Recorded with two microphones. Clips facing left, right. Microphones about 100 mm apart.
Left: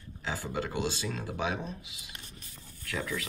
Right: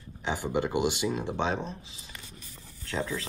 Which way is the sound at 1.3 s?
30° right (ahead or behind).